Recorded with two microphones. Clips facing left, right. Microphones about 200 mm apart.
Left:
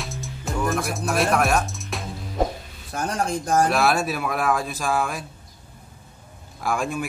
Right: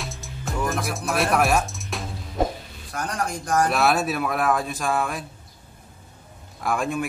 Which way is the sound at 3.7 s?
Centre (ahead or behind).